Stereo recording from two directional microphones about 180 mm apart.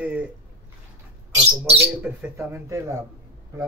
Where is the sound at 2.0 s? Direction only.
10° right (ahead or behind).